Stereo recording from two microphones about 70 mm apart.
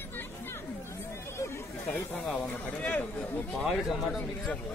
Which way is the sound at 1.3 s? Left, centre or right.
Left.